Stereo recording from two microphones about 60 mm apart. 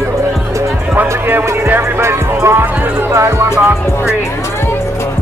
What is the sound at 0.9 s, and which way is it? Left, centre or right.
Music, right.